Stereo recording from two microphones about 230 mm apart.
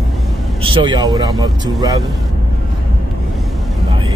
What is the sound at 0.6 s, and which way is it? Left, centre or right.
Speech, right.